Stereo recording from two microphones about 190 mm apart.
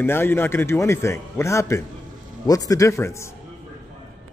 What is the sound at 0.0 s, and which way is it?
A man's voice, 10° left (ahead or behind).